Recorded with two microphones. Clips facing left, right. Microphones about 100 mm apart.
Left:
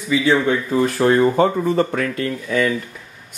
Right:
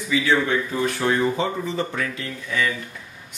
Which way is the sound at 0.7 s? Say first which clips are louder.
Left 8 dB; 45° left (ahead or behind).